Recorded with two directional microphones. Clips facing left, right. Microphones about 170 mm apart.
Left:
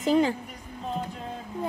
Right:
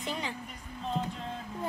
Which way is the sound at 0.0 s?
40° left (ahead or behind).